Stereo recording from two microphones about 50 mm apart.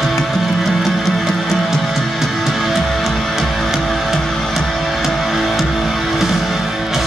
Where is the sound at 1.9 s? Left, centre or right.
Centre.